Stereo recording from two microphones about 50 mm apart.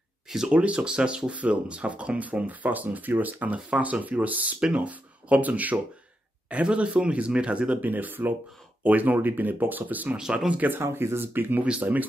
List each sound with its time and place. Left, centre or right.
0.5 s speech: right
7.8 s speech: right
10.8 s speech: right
11.3 s speech: right